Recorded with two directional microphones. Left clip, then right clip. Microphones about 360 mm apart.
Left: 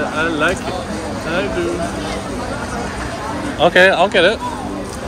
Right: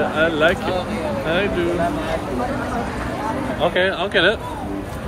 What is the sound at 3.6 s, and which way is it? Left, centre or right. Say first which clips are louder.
Speech: left 9 dB; left.